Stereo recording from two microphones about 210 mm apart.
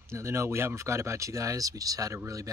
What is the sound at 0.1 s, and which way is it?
Speech, 15° right (ahead or behind).